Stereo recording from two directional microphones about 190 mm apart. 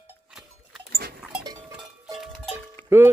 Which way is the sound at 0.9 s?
55° right (ahead or behind).